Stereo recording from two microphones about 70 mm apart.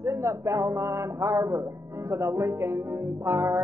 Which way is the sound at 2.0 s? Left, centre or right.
Right.